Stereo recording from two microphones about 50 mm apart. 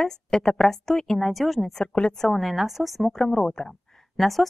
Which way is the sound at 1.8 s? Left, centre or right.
Centre.